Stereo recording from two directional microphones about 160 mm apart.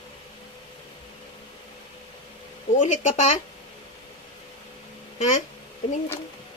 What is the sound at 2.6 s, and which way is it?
Speech, 50° left (ahead or behind).